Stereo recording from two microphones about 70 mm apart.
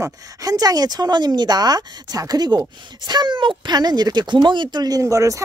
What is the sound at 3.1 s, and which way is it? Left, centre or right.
Speech, right.